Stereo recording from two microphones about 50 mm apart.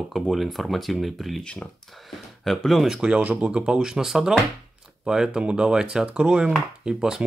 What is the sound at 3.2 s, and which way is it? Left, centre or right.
Speech, right.